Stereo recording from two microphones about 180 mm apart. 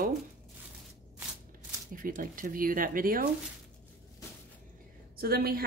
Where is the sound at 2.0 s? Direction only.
50° right (ahead or behind).